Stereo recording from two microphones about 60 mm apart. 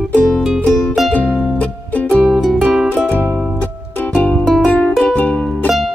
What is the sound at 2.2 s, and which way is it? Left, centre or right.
Music, centre.